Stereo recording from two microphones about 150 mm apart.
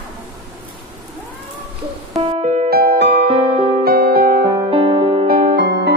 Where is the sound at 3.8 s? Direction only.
90° right.